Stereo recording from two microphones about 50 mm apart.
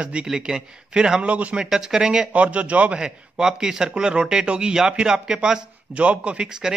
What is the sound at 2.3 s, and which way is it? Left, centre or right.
Speech, right.